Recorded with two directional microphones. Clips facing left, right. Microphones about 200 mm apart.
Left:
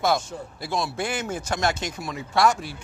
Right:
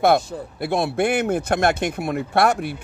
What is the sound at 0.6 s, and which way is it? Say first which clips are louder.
Speech: right 7 dB; 60° right (ahead or behind).